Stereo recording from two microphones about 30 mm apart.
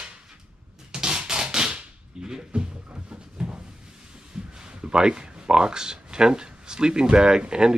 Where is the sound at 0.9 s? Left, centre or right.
Right.